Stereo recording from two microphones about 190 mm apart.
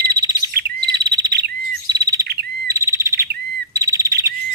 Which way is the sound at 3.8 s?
15° right (ahead or behind).